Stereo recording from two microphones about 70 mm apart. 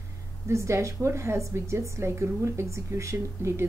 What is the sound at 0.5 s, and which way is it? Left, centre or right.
Speech, right.